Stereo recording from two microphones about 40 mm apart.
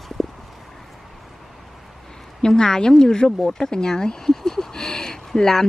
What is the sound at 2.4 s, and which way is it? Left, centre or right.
Speech, centre.